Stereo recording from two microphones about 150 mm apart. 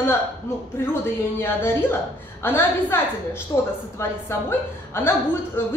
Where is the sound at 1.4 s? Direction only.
15° left (ahead or behind).